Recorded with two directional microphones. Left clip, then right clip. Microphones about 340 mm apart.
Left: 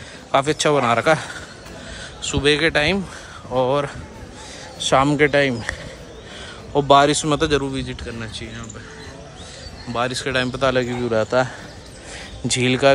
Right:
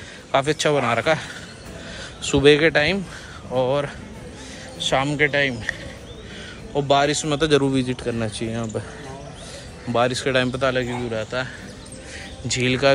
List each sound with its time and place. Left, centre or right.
0.3 s a man's voice: centre
6.7 s speech: centre
9.9 s a man's voice: centre